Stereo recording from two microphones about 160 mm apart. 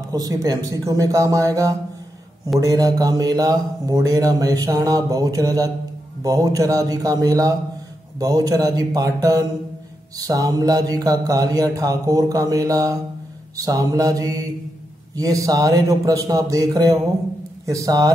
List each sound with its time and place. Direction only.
0.1 s speech: 25° right (ahead or behind)